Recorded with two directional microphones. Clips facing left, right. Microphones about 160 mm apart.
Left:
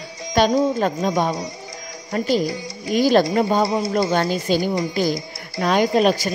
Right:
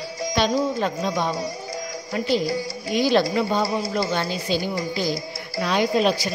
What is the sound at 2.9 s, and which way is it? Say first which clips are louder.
A woman's voice: left 4 dB; 45° left (ahead or behind).